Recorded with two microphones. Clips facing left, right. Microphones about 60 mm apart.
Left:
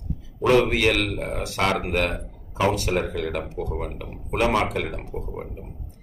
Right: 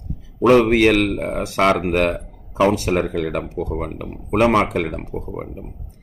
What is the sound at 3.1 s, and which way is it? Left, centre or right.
Speech, right.